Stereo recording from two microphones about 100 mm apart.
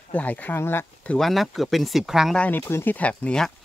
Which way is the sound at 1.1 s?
Centre (ahead or behind).